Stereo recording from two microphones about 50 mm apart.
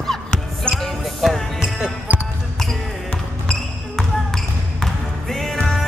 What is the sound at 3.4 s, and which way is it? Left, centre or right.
Basketball bounce, centre.